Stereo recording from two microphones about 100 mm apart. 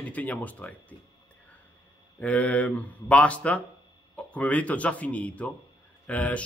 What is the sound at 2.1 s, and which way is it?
Speech, 15° left (ahead or behind).